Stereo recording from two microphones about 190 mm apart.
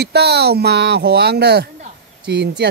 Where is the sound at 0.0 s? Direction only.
60° right (ahead or behind).